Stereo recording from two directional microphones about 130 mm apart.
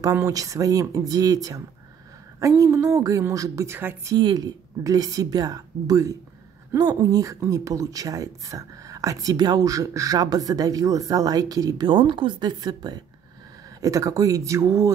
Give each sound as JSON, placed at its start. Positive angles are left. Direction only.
{"t": 0.0, "sound": "speech", "side_deg": -25}
{"t": 4.1, "sound": "speech", "side_deg": -30}